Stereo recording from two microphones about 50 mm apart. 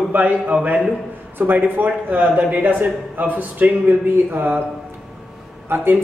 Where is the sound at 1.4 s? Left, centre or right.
Right.